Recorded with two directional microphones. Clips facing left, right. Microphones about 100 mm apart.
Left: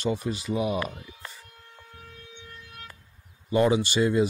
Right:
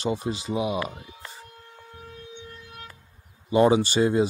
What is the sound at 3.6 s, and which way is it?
Speech, 30° right (ahead or behind).